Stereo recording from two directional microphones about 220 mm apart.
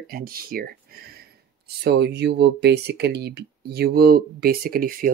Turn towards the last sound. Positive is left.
turn(degrees=-40)  # may be behind; listen again after turning